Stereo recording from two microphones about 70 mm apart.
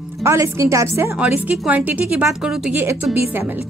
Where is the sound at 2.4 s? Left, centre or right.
Centre.